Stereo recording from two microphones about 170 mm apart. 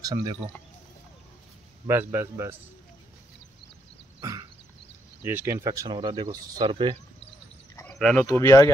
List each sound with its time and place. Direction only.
0.0 s speech: 25° right (ahead or behind)
1.9 s a man's voice: 15° right (ahead or behind)
4.2 s throat clearing: 25° right (ahead or behind)
5.2 s speech: 15° right (ahead or behind)
7.8 s a sound: 5° left (ahead or behind)
8.3 s speech: 20° left (ahead or behind)